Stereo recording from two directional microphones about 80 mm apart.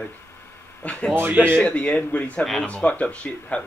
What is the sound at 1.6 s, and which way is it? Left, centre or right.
Speech, centre.